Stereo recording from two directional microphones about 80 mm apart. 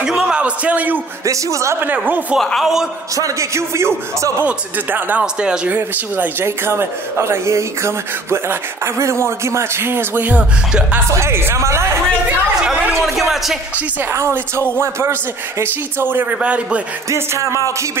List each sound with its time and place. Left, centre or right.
0.0 s a sound: centre
1.2 s speech: right
2.3 s speech: centre
3.2 s speech: right
4.5 s speech: right
5.2 s speech: centre
5.7 s speech: right
12.3 s speech: centre
13.0 s speech: centre
14.1 s speech: right
16.3 s speech: centre
17.1 s speech: right